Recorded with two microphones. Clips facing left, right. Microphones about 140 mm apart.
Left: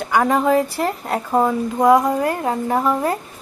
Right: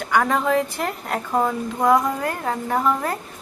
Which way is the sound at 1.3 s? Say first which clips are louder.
Left 4 dB; 20° left (ahead or behind).